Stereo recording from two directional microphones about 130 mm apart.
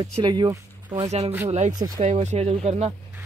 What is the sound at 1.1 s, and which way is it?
Speech, 60° right (ahead or behind).